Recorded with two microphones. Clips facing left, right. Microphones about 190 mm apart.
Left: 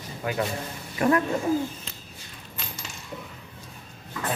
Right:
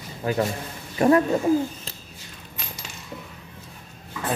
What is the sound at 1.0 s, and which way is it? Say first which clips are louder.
Speech: right 4 dB; 30° right (ahead or behind).